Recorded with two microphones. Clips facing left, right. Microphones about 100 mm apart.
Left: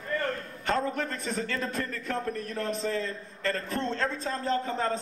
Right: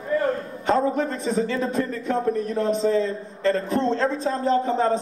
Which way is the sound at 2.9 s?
20° right (ahead or behind).